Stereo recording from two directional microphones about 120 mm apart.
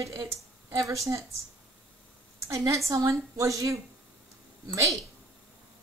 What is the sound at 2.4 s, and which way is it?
A woman's voice, 25° right (ahead or behind).